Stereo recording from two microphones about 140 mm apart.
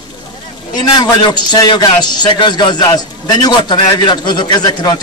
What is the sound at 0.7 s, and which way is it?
A man's voice, 30° left (ahead or behind).